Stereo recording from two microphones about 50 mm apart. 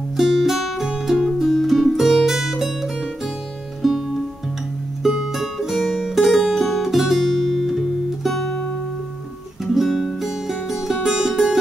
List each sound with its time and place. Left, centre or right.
0.2 s music: centre
5.0 s music: centre
9.8 s music: centre